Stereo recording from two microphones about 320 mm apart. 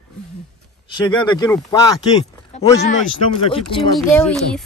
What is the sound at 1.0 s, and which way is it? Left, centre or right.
Speech, centre.